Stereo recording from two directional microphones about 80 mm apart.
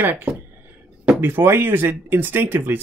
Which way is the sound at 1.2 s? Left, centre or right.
Right.